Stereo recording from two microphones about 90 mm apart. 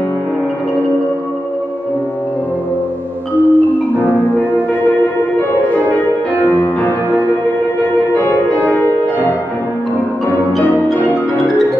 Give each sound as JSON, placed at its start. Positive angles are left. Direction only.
{"t": 3.3, "sound": "music", "side_deg": 20}
{"t": 10.6, "sound": "music", "side_deg": 20}